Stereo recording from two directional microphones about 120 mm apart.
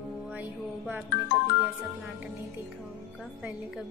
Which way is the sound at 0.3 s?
10° right (ahead or behind).